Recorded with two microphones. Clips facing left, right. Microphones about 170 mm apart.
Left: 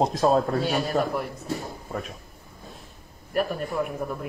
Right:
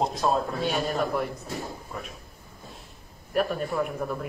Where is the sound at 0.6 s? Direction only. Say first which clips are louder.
Left 2 dB; centre (ahead or behind).